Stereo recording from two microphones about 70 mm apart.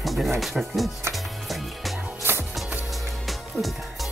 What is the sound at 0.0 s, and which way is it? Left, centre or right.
Music, centre.